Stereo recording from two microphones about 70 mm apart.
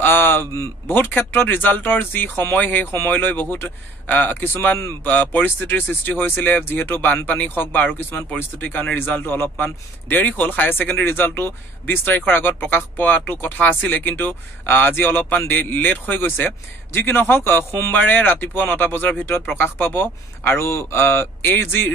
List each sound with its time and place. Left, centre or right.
0.0 s a sound: left
0.8 s a man's voice: left
17.9 s a man's voice: left